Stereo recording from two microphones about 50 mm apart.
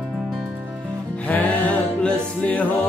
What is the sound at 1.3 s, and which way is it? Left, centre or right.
Music, left.